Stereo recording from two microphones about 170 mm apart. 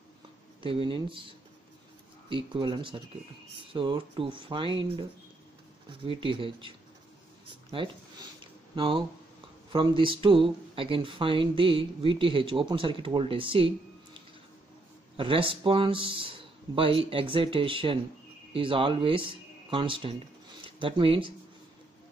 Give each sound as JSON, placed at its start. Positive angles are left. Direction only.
{"t": 0.6, "sound": "speech", "side_deg": -30}
{"t": 7.7, "sound": "speech", "side_deg": -30}